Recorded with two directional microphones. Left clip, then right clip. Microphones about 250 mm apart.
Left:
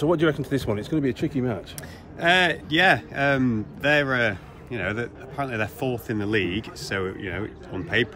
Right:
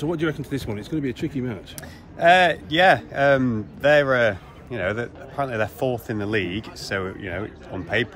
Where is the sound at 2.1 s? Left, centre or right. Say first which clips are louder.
Right 4 dB; centre.